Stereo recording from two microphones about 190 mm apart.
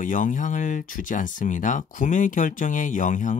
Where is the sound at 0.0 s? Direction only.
45° left (ahead or behind).